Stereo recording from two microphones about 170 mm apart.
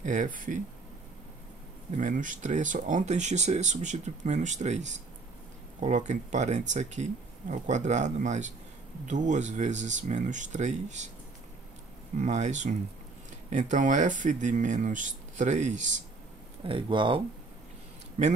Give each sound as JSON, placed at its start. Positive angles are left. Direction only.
{"t": 0.0, "sound": "speech", "side_deg": -50}
{"t": 2.0, "sound": "speech", "side_deg": -50}
{"t": 12.2, "sound": "speech", "side_deg": -45}
{"t": 16.6, "sound": "speech", "side_deg": -30}